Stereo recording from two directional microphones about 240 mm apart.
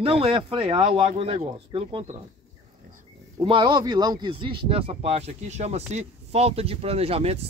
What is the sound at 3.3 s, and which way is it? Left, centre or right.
Speech, centre.